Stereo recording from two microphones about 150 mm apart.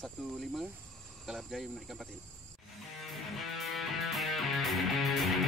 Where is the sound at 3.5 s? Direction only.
Centre (ahead or behind).